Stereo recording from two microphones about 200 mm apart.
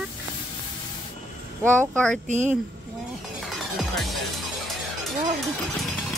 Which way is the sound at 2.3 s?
35° right (ahead or behind).